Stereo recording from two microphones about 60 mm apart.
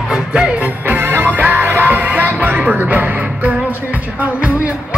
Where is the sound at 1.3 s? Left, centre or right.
Right.